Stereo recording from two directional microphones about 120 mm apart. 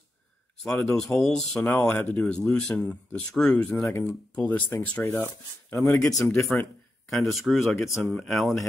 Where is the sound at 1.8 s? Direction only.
25° left (ahead or behind).